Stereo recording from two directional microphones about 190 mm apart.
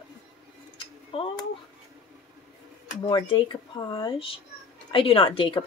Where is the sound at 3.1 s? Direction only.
25° left (ahead or behind).